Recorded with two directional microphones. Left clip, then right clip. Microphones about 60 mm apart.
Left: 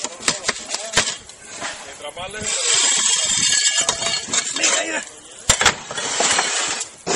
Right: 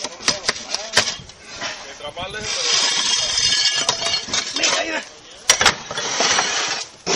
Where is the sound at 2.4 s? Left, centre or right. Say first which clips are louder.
Even; centre.